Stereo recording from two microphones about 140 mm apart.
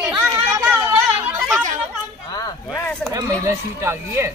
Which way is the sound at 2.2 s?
25° left (ahead or behind).